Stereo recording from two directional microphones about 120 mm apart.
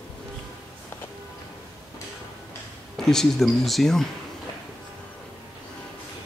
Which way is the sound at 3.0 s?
5° left (ahead or behind).